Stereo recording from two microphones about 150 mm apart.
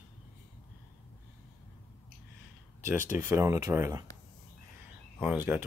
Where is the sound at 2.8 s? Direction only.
15° right (ahead or behind).